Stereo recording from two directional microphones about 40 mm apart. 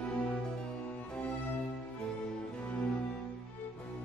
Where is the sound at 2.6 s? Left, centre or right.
Left.